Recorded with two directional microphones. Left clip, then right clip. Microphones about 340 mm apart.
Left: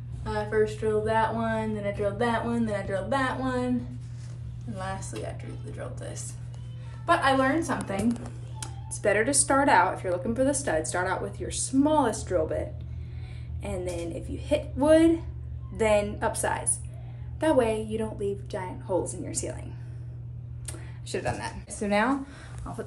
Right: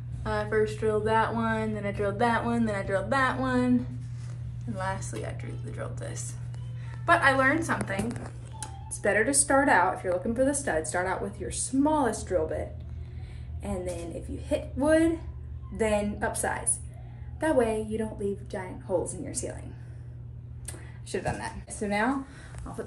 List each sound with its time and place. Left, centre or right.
0.2 s speech: centre
21.1 s speech: centre